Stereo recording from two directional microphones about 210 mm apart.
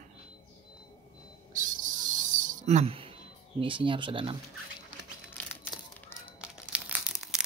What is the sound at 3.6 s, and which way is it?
Speech, 25° right (ahead or behind).